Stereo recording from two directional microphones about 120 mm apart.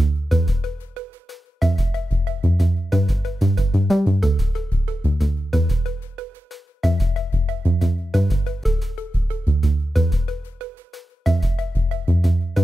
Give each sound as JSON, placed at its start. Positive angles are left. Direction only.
{"t": 0.0, "sound": "music", "side_deg": 0}
{"t": 9.3, "sound": "music", "side_deg": 15}
{"t": 9.6, "sound": "music", "side_deg": 0}